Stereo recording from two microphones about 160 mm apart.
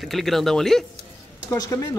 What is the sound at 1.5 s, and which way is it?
Speech, 20° left (ahead or behind).